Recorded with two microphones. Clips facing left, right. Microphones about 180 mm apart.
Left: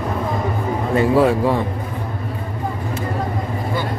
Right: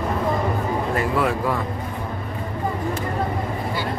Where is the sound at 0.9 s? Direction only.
30° left (ahead or behind).